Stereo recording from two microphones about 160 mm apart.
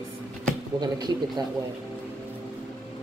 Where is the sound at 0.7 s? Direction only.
25° right (ahead or behind).